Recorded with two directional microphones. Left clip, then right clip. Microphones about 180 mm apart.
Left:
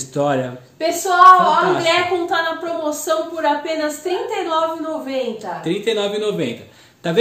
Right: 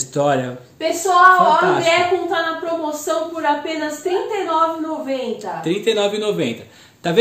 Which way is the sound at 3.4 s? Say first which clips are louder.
Left 2 dB; 55° left (ahead or behind).